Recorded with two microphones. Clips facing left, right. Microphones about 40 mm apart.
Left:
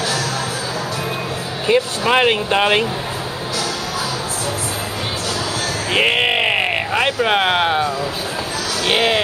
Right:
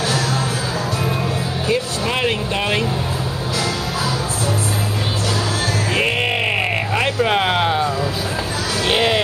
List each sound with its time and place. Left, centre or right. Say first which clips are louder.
1.7 s speech: left 6 dB; left
5.9 s a sound: left 5 dB; left
8.8 s speech: left 1 dB; centre